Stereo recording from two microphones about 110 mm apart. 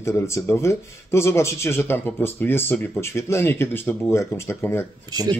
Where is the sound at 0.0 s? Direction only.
25° left (ahead or behind).